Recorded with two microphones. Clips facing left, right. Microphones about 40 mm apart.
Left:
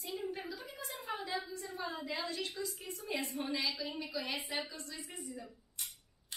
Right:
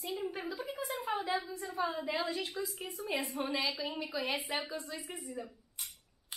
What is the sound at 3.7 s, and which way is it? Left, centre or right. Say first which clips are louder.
A woman's voice: right 2 dB; centre.